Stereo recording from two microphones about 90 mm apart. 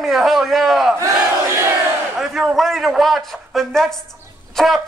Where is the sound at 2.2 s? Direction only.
Centre (ahead or behind).